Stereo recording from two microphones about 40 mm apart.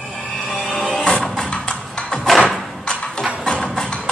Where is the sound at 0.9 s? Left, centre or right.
Centre.